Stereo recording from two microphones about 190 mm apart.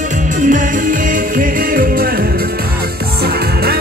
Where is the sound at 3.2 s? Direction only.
55° right (ahead or behind).